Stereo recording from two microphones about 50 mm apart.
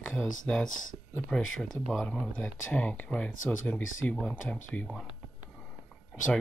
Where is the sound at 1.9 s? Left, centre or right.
Centre.